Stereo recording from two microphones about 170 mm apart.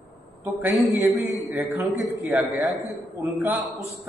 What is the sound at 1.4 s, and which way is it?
Speech, 15° right (ahead or behind).